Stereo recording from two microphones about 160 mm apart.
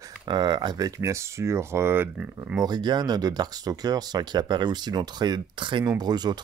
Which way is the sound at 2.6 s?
25° right (ahead or behind).